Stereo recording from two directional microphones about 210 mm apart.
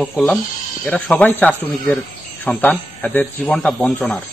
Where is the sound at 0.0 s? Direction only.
Centre (ahead or behind).